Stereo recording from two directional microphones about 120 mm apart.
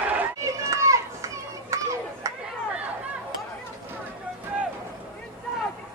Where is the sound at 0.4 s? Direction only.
25° right (ahead or behind).